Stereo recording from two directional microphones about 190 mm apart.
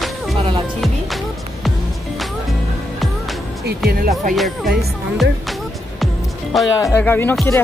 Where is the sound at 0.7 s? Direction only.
Centre (ahead or behind).